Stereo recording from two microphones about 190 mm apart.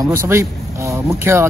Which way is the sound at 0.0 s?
15° right (ahead or behind).